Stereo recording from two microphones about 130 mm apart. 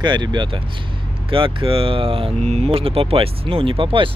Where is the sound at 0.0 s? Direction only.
35° right (ahead or behind).